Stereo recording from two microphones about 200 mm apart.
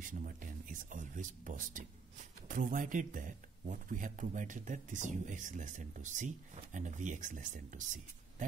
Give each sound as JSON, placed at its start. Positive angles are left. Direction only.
{"t": 0.1, "sound": "speech", "side_deg": -40}